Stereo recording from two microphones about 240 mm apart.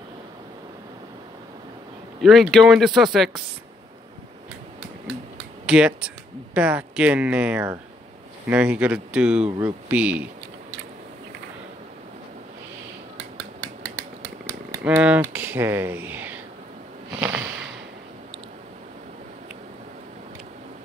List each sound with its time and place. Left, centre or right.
2.2 s speech: centre
5.7 s speech: centre
9.4 s speech: right
9.8 s speech: centre
14.8 s speech: centre
17.2 s a sound: centre